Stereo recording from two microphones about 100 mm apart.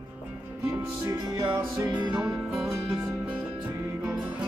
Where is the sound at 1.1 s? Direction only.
40° right (ahead or behind).